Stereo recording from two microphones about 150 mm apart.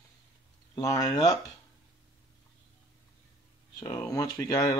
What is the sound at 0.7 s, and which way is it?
Speech, 20° left (ahead or behind).